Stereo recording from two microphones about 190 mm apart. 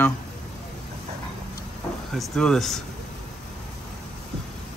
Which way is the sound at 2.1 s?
Centre (ahead or behind).